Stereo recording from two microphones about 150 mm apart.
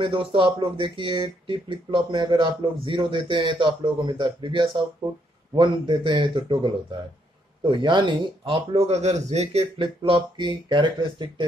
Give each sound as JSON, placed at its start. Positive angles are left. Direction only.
{"t": 0.0, "sound": "speech", "side_deg": -35}